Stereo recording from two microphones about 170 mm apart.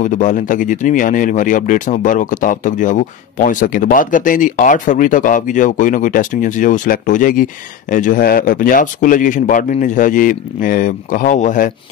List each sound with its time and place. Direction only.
0.0 s speech: 50° left (ahead or behind)